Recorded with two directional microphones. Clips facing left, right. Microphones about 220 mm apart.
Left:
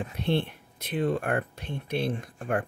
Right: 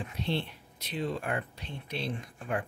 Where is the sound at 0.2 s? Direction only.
55° left (ahead or behind).